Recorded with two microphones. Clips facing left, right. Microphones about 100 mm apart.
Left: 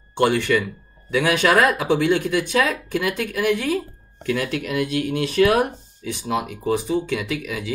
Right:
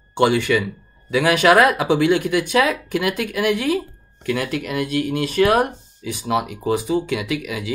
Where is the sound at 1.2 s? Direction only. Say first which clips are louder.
Right 3 dB; 60° right (ahead or behind).